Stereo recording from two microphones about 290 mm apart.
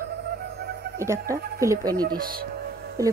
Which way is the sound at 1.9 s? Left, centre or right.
Right.